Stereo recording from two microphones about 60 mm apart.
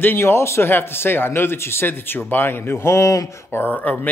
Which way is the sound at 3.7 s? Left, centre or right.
Left.